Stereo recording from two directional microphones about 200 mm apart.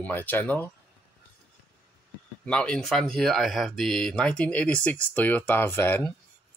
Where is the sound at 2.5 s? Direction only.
5° left (ahead or behind).